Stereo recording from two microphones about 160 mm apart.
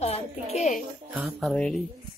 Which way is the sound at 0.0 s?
40° left (ahead or behind).